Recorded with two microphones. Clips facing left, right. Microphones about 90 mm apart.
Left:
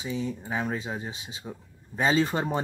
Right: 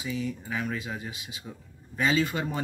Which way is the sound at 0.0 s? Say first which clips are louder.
Left 1 dB; 30° left (ahead or behind).